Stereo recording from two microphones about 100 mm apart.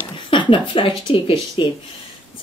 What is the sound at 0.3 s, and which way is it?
Speech, 55° left (ahead or behind).